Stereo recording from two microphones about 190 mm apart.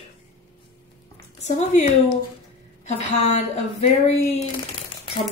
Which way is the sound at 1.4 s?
35° left (ahead or behind).